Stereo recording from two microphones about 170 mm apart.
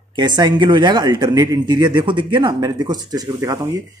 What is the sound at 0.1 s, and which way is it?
Speech, 25° right (ahead or behind).